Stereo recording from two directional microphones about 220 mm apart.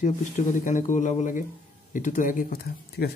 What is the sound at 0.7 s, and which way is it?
Speech, 35° left (ahead or behind).